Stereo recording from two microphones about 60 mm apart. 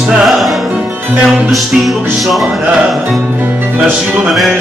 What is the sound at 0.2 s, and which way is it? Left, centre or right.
Music, centre.